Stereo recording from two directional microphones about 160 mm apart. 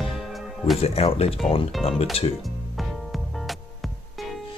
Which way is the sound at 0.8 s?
40° left (ahead or behind).